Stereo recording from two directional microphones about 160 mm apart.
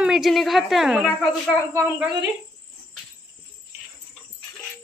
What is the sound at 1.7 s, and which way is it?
Speech, 15° right (ahead or behind).